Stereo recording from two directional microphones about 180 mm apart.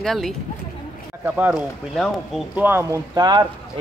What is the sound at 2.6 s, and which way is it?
Speech, 10° right (ahead or behind).